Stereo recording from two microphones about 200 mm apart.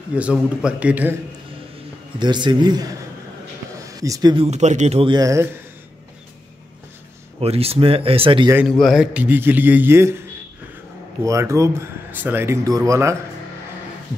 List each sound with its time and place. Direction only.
0.1 s speech: 5° right (ahead or behind)
2.1 s a man's voice: 20° right (ahead or behind)
4.5 s speech: 35° right (ahead or behind); by 5.5 s 15° right (ahead or behind)
7.3 s speech: 30° right (ahead or behind)
8.5 s speech: centre (ahead or behind)
11.2 s speech: 15° right (ahead or behind)